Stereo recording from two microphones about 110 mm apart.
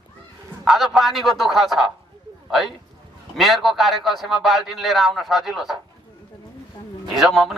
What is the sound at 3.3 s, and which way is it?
A man's voice, centre (ahead or behind).